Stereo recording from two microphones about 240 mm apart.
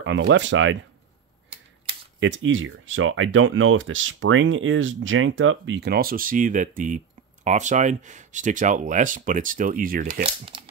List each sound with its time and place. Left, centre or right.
0.0 s speech: right
2.1 s speech: right